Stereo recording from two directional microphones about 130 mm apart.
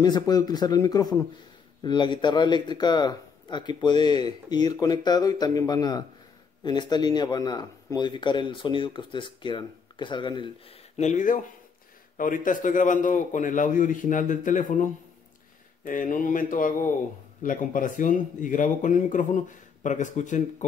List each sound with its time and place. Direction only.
0.0 s speech: 30° left (ahead or behind)
11.0 s speech: 70° left (ahead or behind)
15.8 s speech: 90° left; by 20.6 s 70° left (ahead or behind)